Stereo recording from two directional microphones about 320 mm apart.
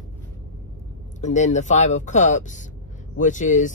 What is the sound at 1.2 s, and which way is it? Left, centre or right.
Speech, left.